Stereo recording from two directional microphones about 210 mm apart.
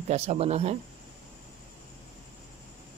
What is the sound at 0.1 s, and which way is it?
Speech, 30° right (ahead or behind).